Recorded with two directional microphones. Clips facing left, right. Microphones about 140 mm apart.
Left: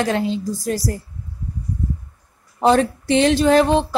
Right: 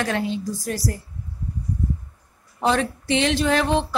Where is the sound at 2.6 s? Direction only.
40° left (ahead or behind).